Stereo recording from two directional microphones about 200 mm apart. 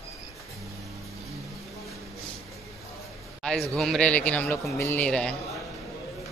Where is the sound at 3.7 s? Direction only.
5° left (ahead or behind).